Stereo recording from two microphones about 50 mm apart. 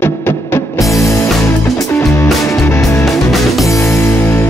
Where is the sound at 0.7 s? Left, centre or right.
Left.